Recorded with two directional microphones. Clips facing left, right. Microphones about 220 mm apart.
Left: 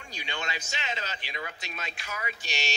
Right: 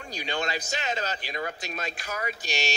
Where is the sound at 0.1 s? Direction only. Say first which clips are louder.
Right 6 dB; 40° right (ahead or behind).